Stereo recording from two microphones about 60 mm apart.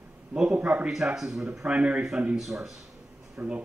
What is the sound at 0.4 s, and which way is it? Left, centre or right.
Speech, centre.